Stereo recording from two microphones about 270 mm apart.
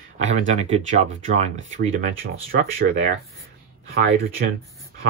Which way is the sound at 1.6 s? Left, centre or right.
Right.